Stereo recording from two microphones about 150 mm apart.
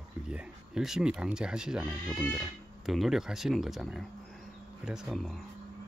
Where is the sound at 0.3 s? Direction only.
5° right (ahead or behind).